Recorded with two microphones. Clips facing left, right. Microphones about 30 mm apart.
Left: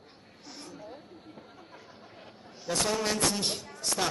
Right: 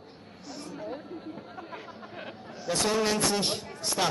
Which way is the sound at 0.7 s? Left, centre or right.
Right.